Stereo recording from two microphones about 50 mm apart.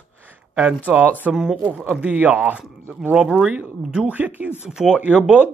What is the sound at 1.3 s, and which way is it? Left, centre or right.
Speech, centre.